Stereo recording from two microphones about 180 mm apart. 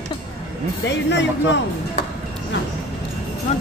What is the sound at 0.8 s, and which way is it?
Speech, 75° left (ahead or behind).